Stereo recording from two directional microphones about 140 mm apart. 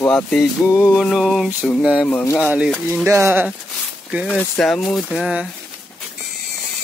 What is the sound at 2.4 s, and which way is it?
Speech, 10° right (ahead or behind).